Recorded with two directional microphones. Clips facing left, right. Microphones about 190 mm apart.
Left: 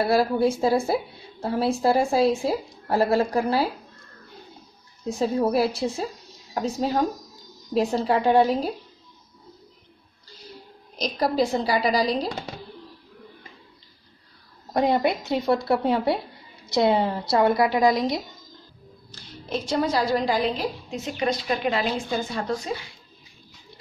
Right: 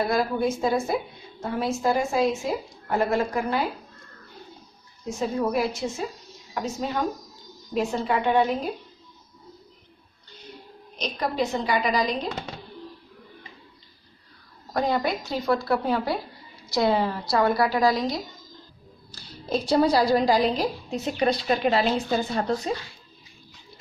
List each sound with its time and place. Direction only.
0.0 s a woman's voice: 30° left (ahead or behind)
5.0 s a woman's voice: 35° left (ahead or behind)
11.0 s a woman's voice: 35° left (ahead or behind)
14.7 s a woman's voice: 25° left (ahead or behind)
19.5 s a woman's voice: 35° right (ahead or behind)